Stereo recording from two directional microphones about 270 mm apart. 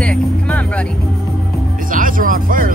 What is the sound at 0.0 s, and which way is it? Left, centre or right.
Music, centre.